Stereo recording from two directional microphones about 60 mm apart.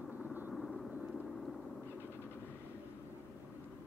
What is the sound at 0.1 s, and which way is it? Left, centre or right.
Vehicle, right.